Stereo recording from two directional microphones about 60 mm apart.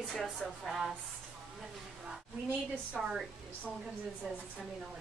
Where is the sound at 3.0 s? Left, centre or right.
Centre.